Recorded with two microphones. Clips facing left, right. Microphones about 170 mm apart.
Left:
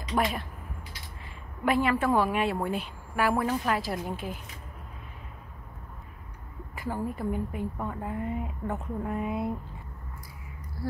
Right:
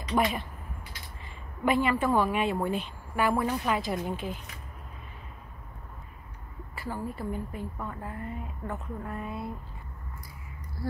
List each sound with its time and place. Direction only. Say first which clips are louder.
0.1 s a woman's voice: right 1 dB; centre (ahead or behind)
1.6 s a woman's voice: even; centre (ahead or behind)
6.7 s a woman's voice: left 3 dB; 15° left (ahead or behind)